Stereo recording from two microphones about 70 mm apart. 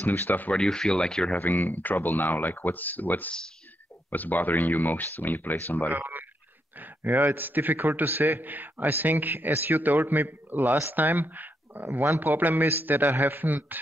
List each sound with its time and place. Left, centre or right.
0.0 s speech: left
0.6 s speech: centre
1.4 s speech: left
5.9 s a man's voice: right